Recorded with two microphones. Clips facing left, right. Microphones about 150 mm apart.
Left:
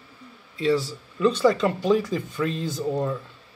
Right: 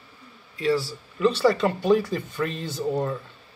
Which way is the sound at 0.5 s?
25° left (ahead or behind).